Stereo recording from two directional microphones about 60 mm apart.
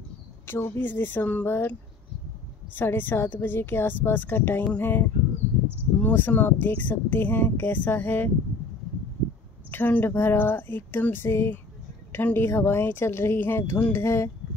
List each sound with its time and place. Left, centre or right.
0.5 s speech: left
2.7 s speech: left
9.7 s speech: left